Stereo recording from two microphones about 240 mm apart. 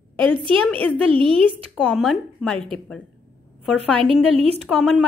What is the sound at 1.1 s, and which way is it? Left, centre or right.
Speech, right.